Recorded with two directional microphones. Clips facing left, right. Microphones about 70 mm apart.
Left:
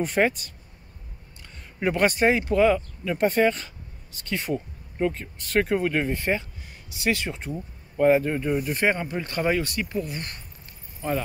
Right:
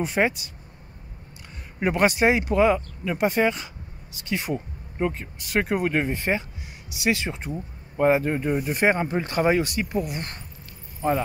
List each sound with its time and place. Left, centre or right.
0.0 s speech: centre
1.8 s speech: right